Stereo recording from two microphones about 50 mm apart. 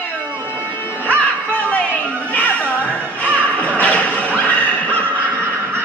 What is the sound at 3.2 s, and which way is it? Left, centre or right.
Whip, left.